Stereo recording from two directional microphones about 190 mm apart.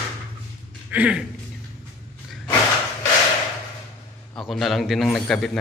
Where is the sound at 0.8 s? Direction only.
5° right (ahead or behind).